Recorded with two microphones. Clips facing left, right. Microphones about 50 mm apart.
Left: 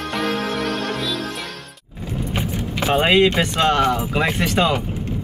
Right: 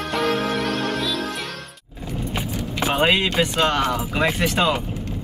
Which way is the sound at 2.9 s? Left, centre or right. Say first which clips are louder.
Left 4 dB; centre.